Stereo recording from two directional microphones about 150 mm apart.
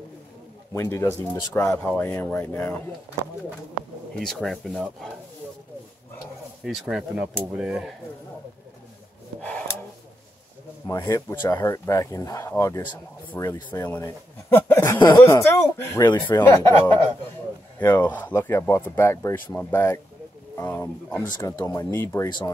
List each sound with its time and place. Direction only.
0.7 s speech: 15° left (ahead or behind)
4.2 s speech: centre (ahead or behind)
6.6 s speech: centre (ahead or behind)
10.9 s speech: 20° left (ahead or behind)
14.8 s speech: 30° left (ahead or behind)
15.2 s speech: 20° left (ahead or behind)
16.4 s speech: 15° left (ahead or behind)
18.0 s speech: 10° left (ahead or behind)